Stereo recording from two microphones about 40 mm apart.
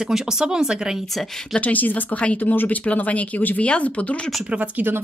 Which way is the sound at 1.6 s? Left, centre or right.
Left.